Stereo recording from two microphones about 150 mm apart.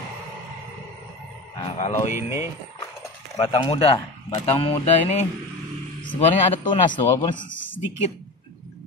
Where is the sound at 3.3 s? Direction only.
30° left (ahead or behind).